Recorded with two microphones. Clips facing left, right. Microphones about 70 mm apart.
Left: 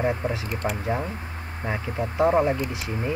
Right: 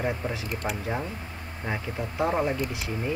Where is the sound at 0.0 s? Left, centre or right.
Left.